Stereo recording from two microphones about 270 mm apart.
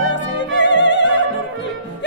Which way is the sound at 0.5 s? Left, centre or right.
Left.